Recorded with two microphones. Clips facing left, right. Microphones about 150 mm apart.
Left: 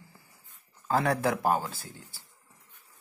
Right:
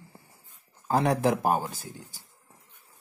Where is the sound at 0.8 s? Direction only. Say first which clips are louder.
Right 3 dB; 20° right (ahead or behind).